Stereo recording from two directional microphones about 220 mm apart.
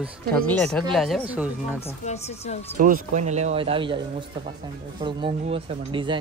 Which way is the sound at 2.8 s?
35° right (ahead or behind).